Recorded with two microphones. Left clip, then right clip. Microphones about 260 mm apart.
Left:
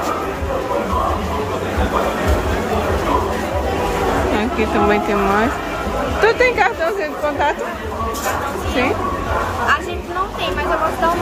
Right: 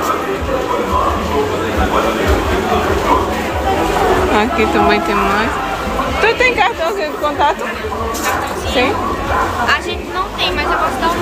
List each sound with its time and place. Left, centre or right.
4.4 s speech: centre